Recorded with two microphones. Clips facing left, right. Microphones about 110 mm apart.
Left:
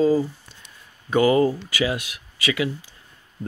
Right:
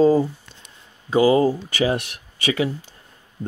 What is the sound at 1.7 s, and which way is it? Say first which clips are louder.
Speech: right 3 dB; 45° right (ahead or behind).